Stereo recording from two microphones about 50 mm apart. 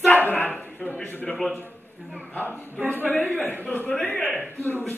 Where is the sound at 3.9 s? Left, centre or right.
Left.